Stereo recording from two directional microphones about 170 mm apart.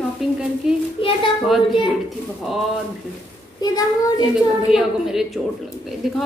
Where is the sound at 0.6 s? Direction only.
5° right (ahead or behind).